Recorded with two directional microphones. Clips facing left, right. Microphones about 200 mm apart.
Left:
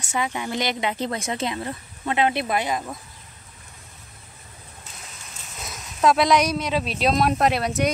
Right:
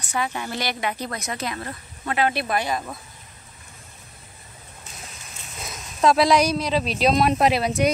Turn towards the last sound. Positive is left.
turn(degrees=0)  # may be behind; listen again after turning